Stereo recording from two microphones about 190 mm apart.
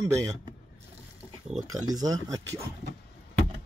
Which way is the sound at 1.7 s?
20° right (ahead or behind).